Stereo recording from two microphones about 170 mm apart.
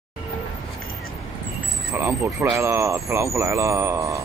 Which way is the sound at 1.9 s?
15° right (ahead or behind).